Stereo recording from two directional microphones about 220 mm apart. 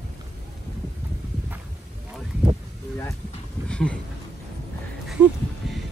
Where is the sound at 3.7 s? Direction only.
5° left (ahead or behind).